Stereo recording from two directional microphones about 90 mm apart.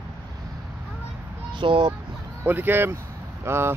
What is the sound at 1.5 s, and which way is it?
Speech, 60° right (ahead or behind).